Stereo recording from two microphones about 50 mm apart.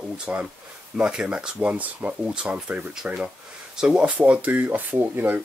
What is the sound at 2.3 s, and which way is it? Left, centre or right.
Speech, centre.